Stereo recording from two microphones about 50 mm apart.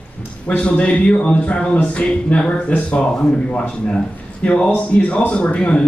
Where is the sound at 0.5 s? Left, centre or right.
Left.